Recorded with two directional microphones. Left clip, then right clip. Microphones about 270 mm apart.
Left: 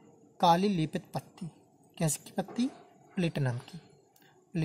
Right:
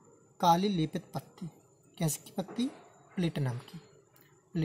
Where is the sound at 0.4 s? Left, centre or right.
Left.